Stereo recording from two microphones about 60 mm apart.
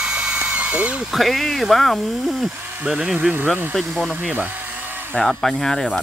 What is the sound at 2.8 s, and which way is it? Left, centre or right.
Speech, centre.